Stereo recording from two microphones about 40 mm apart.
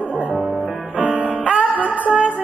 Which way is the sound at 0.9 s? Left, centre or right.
Right.